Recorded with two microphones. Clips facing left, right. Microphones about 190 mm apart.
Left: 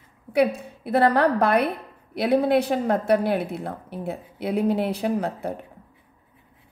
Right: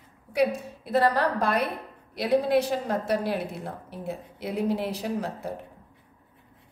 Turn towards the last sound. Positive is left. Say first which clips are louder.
# left 5 dB
turn(degrees=60)  # may be behind; listen again after turning